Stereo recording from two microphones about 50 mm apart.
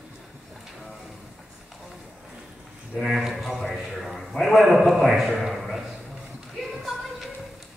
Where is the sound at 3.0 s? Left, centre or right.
Centre.